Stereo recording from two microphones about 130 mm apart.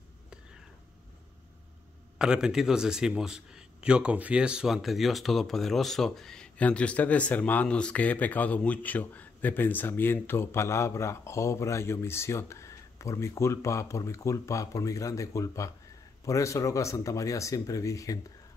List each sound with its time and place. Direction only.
2.1 s a man's voice: 5° right (ahead or behind); by 18.2 s 25° left (ahead or behind)